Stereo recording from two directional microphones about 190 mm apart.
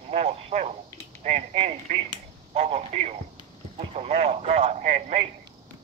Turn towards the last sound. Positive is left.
turn(degrees=-35)  # may be behind; listen again after turning